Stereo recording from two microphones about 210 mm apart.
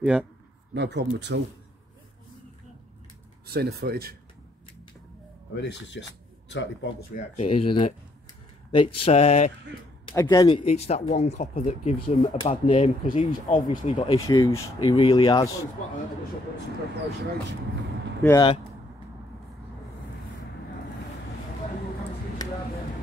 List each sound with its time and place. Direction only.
0.0 s speech: 5° right (ahead or behind)
0.7 s speech: 55° right (ahead or behind)
3.4 s speech: 50° right (ahead or behind)
5.5 s speech: 55° left (ahead or behind)
7.3 s mantra: 30° left (ahead or behind)
10.0 s speech: 20° left (ahead or behind)
13.6 s mantra: 30° left (ahead or behind)
14.0 s speech: 20° left (ahead or behind)
15.0 s mantra: 20° left (ahead or behind)
18.2 s speech: 15° left (ahead or behind)